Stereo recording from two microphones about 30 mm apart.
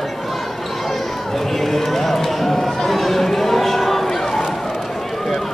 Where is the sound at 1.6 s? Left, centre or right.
Centre.